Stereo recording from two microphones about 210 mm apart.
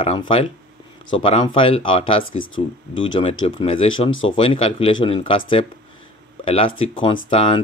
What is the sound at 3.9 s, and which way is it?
Speech, 70° left (ahead or behind).